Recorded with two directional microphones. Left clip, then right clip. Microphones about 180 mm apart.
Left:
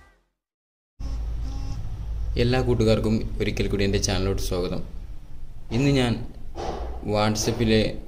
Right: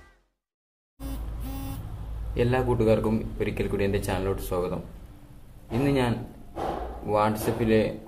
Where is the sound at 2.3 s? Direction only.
35° left (ahead or behind).